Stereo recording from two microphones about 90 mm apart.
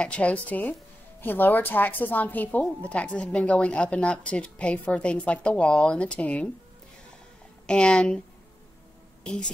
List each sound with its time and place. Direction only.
0.0 s a woman's voice: 15° left (ahead or behind)
7.6 s speech: 10° left (ahead or behind)
9.2 s a woman's voice: 10° left (ahead or behind)